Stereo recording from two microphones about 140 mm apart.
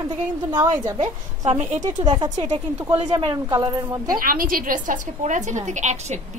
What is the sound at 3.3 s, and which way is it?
Speech, 30° right (ahead or behind).